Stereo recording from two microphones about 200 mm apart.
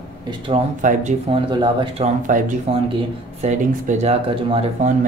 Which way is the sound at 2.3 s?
40° right (ahead or behind).